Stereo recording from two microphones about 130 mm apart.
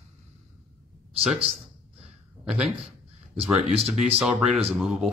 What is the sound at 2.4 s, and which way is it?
Speech, 5° right (ahead or behind).